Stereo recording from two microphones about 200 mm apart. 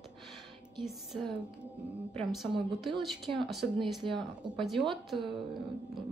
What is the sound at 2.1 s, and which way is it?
Speech, centre (ahead or behind).